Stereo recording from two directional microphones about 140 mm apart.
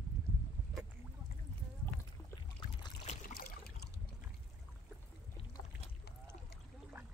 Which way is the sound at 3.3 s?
90° left.